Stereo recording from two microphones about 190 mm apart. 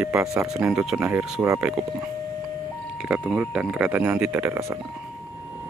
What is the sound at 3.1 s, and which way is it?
Speech, 5° right (ahead or behind).